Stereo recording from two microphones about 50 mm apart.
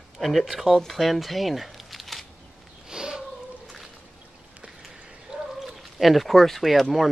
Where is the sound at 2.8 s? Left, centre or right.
Centre.